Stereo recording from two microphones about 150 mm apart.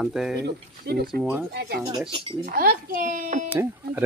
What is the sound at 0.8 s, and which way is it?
Speech, 90° right.